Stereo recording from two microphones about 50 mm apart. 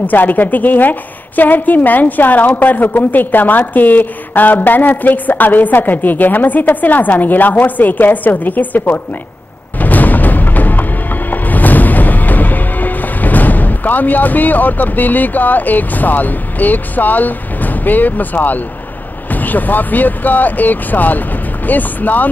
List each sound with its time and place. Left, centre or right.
0.0 s a woman's voice: left
9.8 s music: left
19.3 s a woman's voice: left